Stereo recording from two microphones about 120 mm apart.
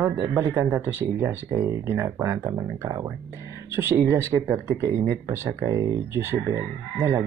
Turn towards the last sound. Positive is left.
turn(degrees=-20)  # may be behind; listen again after turning